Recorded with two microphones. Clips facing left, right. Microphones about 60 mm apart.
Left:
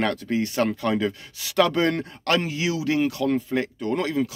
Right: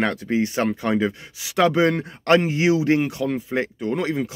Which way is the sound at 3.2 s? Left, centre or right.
Centre.